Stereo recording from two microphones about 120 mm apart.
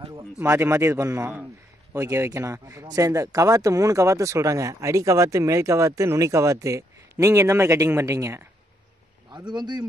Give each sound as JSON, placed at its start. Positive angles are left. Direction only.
{"t": 0.4, "sound": "a man's voice", "side_deg": -20}
{"t": 2.0, "sound": "speech", "side_deg": -25}
{"t": 9.5, "sound": "speech", "side_deg": -35}